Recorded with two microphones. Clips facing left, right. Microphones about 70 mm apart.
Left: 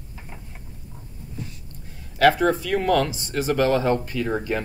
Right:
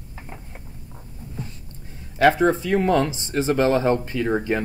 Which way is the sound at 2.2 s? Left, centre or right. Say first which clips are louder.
Right 1 dB; right.